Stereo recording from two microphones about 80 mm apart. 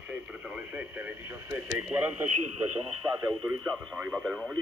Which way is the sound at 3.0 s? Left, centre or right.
Right.